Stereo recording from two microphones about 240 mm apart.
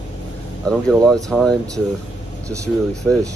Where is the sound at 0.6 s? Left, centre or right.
Centre.